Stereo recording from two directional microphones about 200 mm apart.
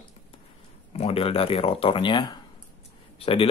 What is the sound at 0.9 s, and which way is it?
Speech, 30° left (ahead or behind).